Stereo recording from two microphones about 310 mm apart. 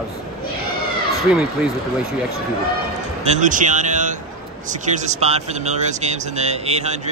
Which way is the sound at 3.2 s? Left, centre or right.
Right.